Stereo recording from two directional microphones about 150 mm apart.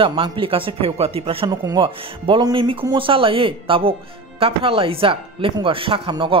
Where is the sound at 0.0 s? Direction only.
35° right (ahead or behind).